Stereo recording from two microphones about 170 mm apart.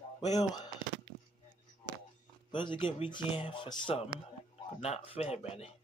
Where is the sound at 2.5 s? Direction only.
30° left (ahead or behind).